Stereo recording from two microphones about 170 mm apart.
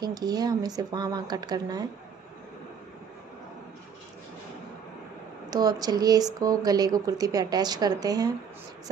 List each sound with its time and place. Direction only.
0.0 s speech: 20° right (ahead or behind)
5.5 s speech: 20° right (ahead or behind)